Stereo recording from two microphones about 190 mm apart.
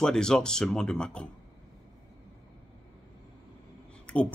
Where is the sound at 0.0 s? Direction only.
5° left (ahead or behind).